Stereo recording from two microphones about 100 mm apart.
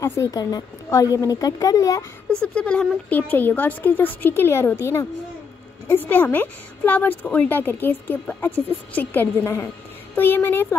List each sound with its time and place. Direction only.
0.0 s a woman's voice: 35° left (ahead or behind)
2.4 s a woman's voice: 10° left (ahead or behind)